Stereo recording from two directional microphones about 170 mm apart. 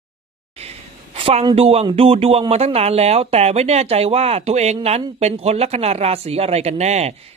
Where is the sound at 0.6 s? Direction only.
35° right (ahead or behind).